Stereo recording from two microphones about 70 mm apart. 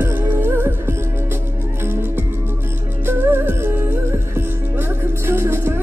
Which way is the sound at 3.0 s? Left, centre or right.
Right.